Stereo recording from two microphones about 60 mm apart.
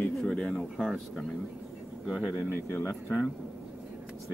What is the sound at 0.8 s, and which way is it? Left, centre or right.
Speech, centre.